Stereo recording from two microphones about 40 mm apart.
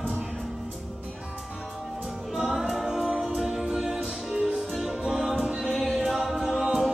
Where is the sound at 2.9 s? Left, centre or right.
Centre.